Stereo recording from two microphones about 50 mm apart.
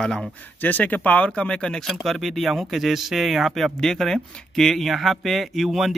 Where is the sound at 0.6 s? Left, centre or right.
Left; by 1.9 s centre.